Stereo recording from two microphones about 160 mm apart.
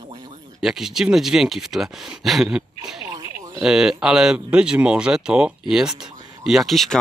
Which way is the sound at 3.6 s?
5° right (ahead or behind).